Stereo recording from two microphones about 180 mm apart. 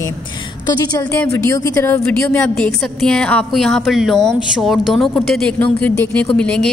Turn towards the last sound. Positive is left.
turn(degrees=5)  # may be behind; listen again after turning